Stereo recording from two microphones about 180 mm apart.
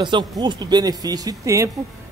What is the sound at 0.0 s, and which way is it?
A man's voice, 25° right (ahead or behind).